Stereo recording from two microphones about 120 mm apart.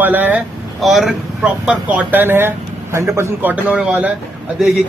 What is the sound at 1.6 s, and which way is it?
Speech, 15° right (ahead or behind).